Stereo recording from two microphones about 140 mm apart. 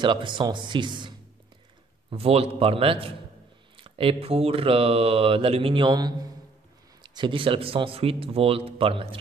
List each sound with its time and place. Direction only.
0.0 s speech: 35° right (ahead or behind)
2.0 s a man's voice: 45° right (ahead or behind)